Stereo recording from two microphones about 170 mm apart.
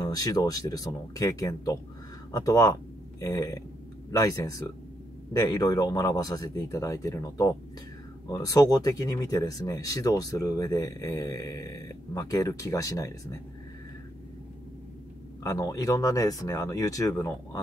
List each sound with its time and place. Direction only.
0.0 s speech: 20° left (ahead or behind)
15.4 s speech: 20° left (ahead or behind)